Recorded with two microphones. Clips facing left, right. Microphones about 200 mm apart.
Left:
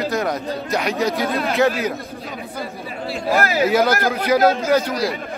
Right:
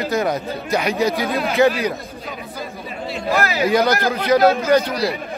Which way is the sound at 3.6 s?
5° left (ahead or behind).